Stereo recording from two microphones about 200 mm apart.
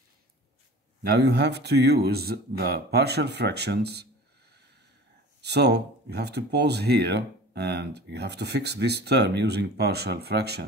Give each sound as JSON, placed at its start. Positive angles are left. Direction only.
{"t": 1.0, "sound": "speech", "side_deg": -55}